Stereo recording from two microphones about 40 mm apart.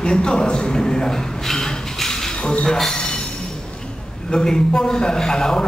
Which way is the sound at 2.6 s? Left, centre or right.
Centre.